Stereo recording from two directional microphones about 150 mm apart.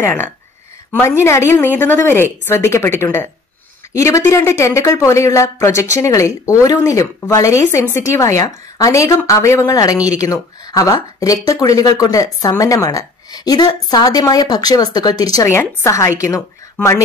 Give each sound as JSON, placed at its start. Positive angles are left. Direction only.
{"t": 0.0, "sound": "a woman's voice", "side_deg": 15}